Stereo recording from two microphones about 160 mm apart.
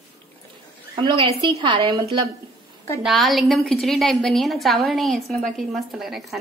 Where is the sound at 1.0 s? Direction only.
30° right (ahead or behind).